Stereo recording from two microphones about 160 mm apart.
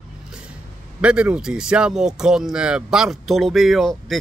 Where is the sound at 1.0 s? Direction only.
5° right (ahead or behind).